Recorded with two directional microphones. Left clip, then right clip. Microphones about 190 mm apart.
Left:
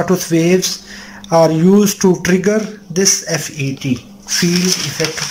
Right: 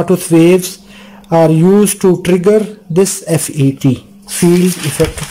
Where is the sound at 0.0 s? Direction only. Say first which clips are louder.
Right 5 dB; 15° right (ahead or behind).